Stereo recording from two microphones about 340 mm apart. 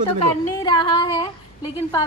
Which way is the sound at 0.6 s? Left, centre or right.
Centre.